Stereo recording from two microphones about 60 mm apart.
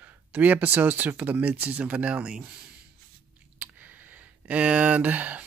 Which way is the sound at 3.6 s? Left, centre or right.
Right.